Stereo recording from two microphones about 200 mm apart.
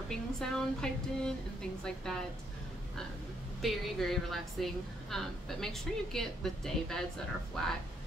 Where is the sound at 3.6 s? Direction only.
Centre (ahead or behind).